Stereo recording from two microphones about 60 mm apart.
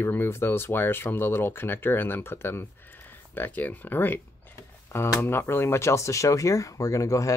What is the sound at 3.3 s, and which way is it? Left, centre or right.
Speech, left.